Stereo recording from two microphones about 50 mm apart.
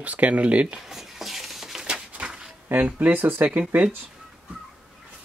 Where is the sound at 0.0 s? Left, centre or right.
Right.